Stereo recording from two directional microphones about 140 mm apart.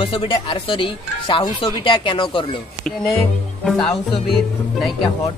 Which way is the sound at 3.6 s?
Centre (ahead or behind).